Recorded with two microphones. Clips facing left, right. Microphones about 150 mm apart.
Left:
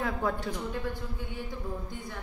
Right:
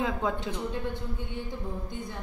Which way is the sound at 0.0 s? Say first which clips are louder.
Right 1 dB; 20° right (ahead or behind).